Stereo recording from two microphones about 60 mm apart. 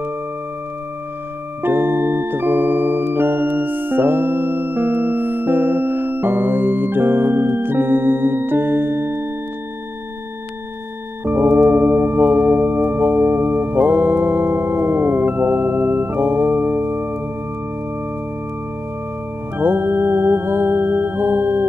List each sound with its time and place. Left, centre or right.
1.6 s music: right
11.2 s singing bowl: right
19.6 s music: right